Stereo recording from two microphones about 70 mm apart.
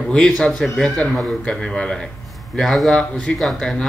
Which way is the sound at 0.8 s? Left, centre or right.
Centre.